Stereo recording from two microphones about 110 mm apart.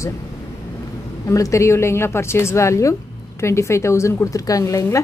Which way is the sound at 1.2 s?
30° left (ahead or behind).